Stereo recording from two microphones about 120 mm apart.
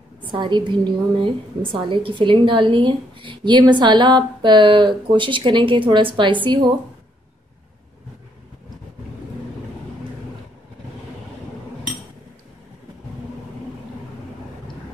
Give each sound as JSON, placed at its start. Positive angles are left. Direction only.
{"t": 0.2, "sound": "a woman's voice", "side_deg": -40}